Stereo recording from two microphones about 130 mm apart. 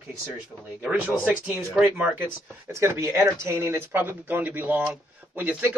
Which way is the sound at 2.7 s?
20° right (ahead or behind).